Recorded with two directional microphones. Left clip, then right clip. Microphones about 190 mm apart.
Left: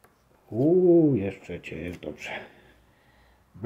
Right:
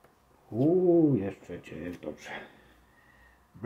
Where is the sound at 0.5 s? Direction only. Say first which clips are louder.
Left 4 dB; 20° left (ahead or behind).